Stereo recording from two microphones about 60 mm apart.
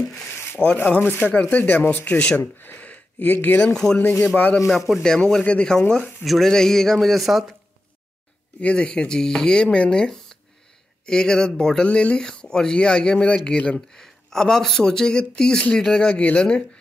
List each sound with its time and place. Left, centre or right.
0.1 s rub: centre
0.8 s speech: left
3.6 s a man's voice: centre
8.5 s speech: centre